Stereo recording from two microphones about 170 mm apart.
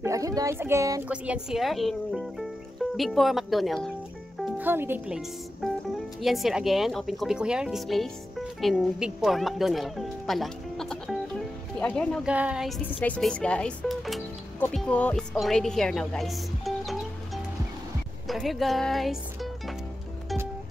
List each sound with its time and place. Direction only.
0.0 s speech: 20° right (ahead or behind)
1.0 s speech: 5° right (ahead or behind)
4.6 s speech: 10° right (ahead or behind); by 12.3 s 5° left (ahead or behind)
12.3 s a woman's voice: 5° right (ahead or behind)